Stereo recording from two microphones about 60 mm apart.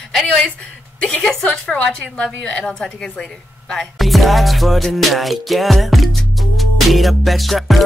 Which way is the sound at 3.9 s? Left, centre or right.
Centre.